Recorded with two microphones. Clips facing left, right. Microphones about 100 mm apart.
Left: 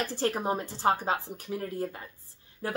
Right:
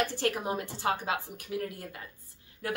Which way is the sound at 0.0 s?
35° left (ahead or behind).